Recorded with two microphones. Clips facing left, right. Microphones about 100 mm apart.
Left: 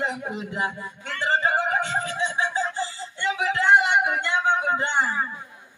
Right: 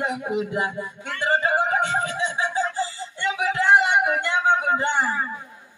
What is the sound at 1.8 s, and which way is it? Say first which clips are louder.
Music: right 2 dB; 25° right (ahead or behind).